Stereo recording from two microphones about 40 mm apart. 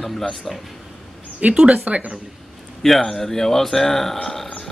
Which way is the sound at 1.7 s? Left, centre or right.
Right.